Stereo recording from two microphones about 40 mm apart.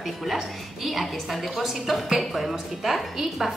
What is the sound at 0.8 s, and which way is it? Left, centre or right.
A woman's voice, centre.